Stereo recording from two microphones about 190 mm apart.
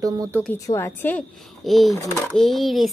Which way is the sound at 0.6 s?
15° left (ahead or behind).